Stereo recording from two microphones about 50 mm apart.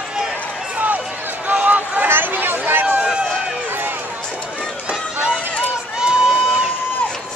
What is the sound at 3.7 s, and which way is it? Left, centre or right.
Run, right.